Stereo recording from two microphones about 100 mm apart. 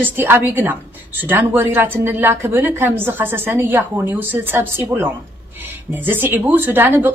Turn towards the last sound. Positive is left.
turn(degrees=-20)  # may be behind; listen again after turning